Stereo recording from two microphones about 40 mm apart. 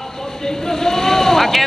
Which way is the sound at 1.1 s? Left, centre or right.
Centre.